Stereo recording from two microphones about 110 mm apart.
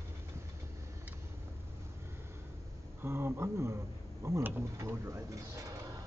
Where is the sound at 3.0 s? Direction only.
20° right (ahead or behind).